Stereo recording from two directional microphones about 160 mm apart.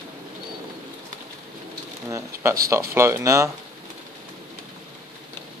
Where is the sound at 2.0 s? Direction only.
20° right (ahead or behind).